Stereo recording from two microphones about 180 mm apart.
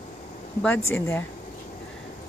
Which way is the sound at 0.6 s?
10° left (ahead or behind).